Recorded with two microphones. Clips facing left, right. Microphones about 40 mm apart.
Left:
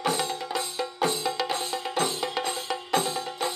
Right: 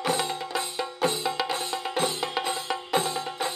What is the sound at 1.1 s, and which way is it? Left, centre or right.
Music, right.